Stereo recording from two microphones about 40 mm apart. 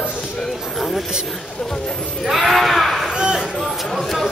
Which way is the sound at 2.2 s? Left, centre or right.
Centre.